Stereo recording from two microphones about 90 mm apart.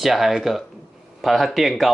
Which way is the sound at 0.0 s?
5° right (ahead or behind).